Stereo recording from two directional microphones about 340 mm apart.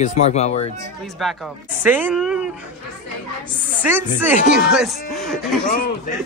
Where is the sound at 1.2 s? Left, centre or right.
Centre.